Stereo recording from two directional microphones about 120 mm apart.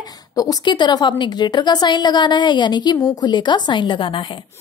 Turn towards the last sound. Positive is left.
turn(degrees=45)  # may be behind; listen again after turning